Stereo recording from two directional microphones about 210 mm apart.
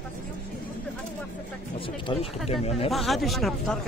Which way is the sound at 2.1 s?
25° left (ahead or behind).